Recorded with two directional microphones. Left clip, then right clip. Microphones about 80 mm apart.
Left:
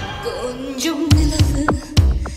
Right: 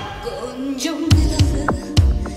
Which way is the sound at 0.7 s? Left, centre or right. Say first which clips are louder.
Left 2 dB; right.